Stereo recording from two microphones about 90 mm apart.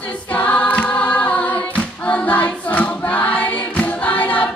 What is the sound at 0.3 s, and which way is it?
Choir, 15° left (ahead or behind).